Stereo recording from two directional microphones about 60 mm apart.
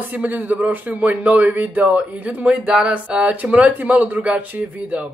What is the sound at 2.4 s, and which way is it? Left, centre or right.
A man's voice, centre.